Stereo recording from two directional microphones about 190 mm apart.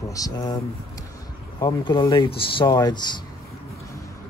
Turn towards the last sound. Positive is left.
turn(degrees=20)  # may be behind; listen again after turning